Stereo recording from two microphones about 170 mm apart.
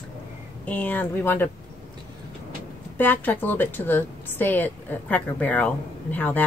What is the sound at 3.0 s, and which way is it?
A woman's voice, 10° left (ahead or behind).